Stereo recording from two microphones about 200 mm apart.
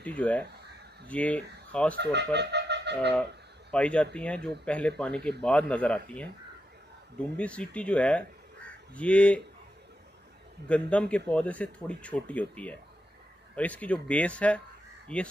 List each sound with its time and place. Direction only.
0.0 s speech: 5° left (ahead or behind)
2.3 s wind instrument: 60° right (ahead or behind)
3.7 s speech: 5° left (ahead or behind)
7.3 s speech: 5° left (ahead or behind)
10.7 s speech: 5° left (ahead or behind)